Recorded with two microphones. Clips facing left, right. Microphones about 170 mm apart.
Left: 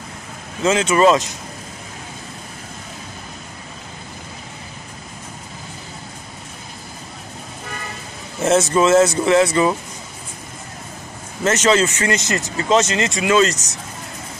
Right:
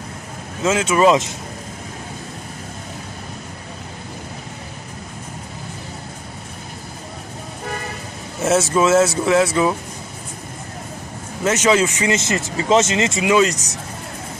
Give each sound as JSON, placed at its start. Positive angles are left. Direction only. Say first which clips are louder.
{"t": 0.6, "sound": "speech", "louder": "left 1 dB", "side_deg": -5}
{"t": 8.4, "sound": "speech", "louder": "left 1 dB", "side_deg": -5}
{"t": 11.4, "sound": "speech", "louder": "even", "side_deg": -10}
{"t": 12.1, "sound": "speech", "louder": "right 1 dB", "side_deg": -25}